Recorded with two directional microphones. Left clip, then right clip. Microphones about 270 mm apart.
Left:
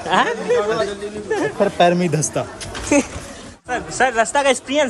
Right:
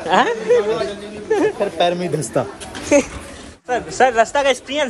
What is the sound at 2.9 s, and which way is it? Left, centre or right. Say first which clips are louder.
A man's voice: right 3 dB; centre.